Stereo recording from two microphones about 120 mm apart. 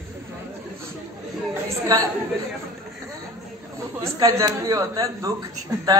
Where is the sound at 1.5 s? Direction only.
25° right (ahead or behind).